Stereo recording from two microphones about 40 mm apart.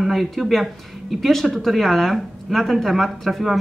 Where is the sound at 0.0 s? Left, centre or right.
Centre.